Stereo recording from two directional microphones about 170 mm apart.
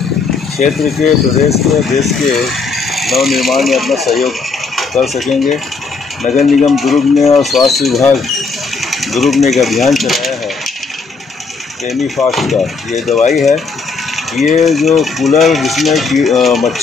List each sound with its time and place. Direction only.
0.6 s speech: centre (ahead or behind)
6.3 s speech: 45° left (ahead or behind)
6.7 s speech: centre (ahead or behind)
12.3 s speech: centre (ahead or behind)
14.6 s speech: centre (ahead or behind)